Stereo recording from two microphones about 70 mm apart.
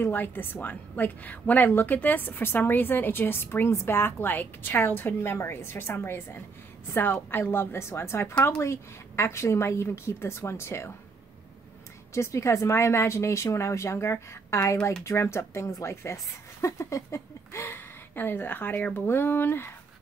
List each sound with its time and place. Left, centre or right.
0.0 s a woman's voice: left
8.4 s a woman's voice: left
8.6 s speech: left
12.1 s a woman's voice: left